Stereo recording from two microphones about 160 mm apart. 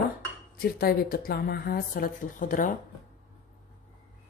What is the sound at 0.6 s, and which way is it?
A woman's voice, 70° left (ahead or behind).